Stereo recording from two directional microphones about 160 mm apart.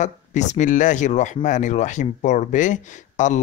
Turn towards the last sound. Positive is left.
turn(degrees=50)  # may be behind; listen again after turning